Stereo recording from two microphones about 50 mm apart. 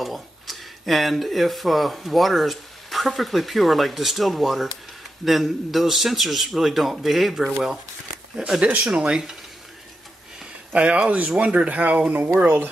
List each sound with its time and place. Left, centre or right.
0.0 s a man's voice: centre
8.5 s speech: centre
10.7 s speech: right